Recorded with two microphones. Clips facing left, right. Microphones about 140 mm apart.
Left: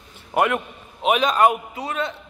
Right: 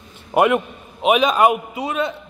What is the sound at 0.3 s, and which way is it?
A man's voice, 20° right (ahead or behind).